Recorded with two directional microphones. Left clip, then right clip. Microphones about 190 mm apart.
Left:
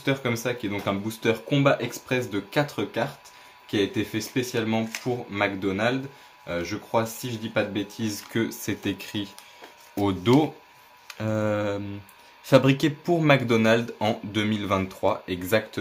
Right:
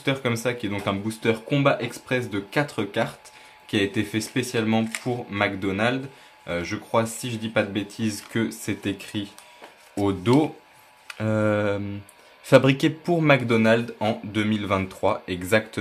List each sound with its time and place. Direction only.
0.0 s speech: 20° right (ahead or behind); by 10.5 s centre (ahead or behind)
11.1 s mantra: 10° right (ahead or behind)
12.4 s speech: 15° right (ahead or behind)